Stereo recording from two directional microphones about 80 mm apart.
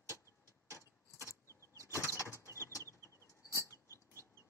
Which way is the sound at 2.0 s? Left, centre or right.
Left.